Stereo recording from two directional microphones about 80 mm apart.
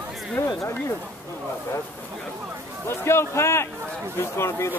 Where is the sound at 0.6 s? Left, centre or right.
Left.